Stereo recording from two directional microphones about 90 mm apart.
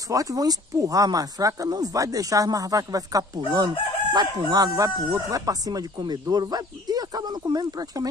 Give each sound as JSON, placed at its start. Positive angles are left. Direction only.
{"t": 0.1, "sound": "speech", "side_deg": -40}
{"t": 3.5, "sound": "crowing", "side_deg": -50}